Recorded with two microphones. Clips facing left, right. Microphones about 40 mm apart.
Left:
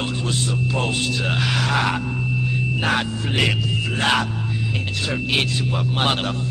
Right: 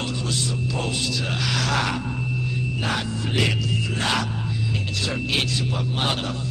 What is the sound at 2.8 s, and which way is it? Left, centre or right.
Music, left.